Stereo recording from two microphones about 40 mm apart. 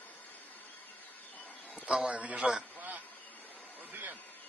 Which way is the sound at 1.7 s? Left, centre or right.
Right.